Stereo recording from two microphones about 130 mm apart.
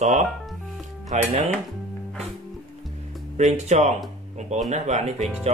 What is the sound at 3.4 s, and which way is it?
Speech, 60° right (ahead or behind).